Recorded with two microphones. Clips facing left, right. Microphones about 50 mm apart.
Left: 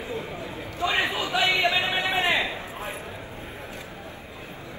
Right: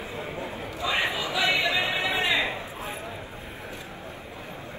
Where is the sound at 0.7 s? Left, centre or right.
Left.